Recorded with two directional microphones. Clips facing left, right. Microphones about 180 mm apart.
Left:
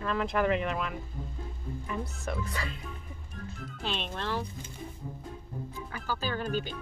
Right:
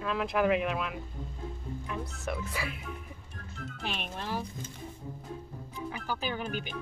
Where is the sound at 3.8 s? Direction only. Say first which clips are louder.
Left 3 dB; 10° right (ahead or behind).